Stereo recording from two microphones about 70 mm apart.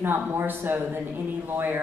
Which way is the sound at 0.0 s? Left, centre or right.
Right.